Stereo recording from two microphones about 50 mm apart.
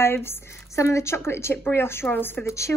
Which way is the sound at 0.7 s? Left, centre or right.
Left.